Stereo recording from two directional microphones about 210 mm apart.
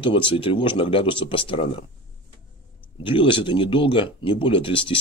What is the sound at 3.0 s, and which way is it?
Speech, 25° left (ahead or behind).